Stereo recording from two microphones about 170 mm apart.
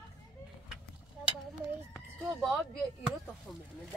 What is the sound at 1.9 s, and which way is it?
Speech, 5° left (ahead or behind).